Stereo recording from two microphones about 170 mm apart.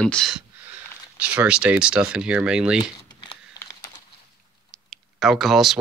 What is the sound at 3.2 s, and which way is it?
Typing, 25° left (ahead or behind).